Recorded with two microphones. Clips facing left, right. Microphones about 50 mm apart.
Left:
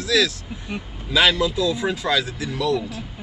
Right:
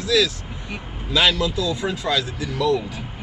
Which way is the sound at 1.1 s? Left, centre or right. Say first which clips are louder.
Left 1 dB; centre.